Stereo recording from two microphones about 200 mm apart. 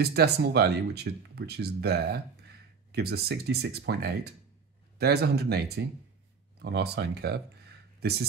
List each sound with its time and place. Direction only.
0.0 s speech: 55° right (ahead or behind)